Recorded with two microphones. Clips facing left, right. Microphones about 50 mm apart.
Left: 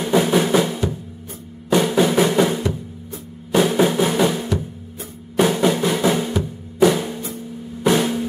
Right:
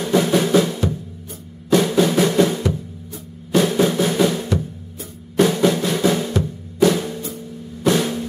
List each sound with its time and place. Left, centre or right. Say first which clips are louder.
0.0 s drum: even; centre